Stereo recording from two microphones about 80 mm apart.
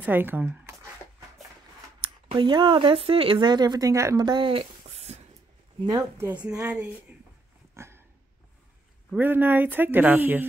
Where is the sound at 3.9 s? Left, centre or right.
Right.